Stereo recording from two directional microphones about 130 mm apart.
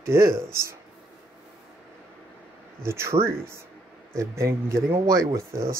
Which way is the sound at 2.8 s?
20° right (ahead or behind).